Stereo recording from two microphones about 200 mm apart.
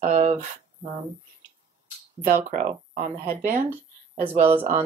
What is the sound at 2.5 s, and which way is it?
Speech, 40° right (ahead or behind).